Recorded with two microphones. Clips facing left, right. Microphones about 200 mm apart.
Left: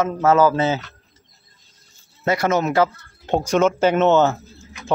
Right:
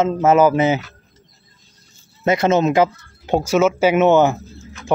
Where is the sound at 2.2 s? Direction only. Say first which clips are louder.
Right 4 dB; 20° right (ahead or behind).